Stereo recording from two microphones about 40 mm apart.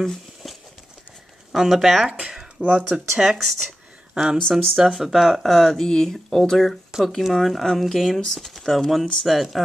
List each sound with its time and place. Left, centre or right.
0.0 s a sound: centre
1.5 s speech: centre
2.0 s speech: right
2.6 s speech: centre
3.2 s speech: centre
4.4 s speech: centre
4.8 s speech: centre